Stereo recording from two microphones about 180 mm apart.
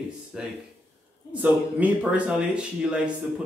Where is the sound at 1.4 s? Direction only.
5° right (ahead or behind).